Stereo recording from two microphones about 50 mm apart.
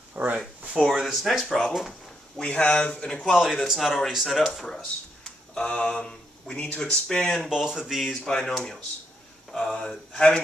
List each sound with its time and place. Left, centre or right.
0.1 s speech: right
0.4 s speech: centre
1.9 s speech: centre
3.3 s speech: centre
4.6 s a man's voice: centre
7.4 s speech: centre
8.1 s a man's voice: centre